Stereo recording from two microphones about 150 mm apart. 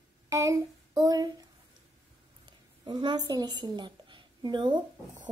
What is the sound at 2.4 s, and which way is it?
A woman's voice, 30° right (ahead or behind).